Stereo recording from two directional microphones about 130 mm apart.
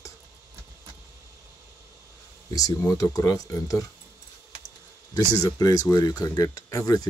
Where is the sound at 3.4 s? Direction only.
25° left (ahead or behind).